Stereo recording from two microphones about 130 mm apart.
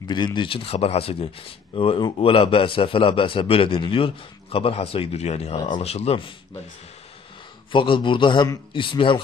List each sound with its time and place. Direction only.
0.1 s a man's voice: 35° left (ahead or behind)
7.7 s a man's voice: 40° left (ahead or behind)